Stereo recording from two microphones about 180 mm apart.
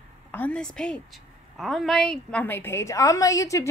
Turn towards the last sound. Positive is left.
turn(degrees=15)  # may be behind; listen again after turning